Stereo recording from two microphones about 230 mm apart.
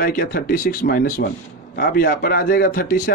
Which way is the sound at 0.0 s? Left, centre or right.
Left.